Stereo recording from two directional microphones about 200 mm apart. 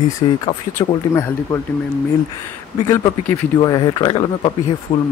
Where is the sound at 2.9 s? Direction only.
15° left (ahead or behind).